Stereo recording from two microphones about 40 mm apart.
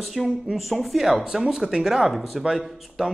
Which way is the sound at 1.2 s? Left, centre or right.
Right.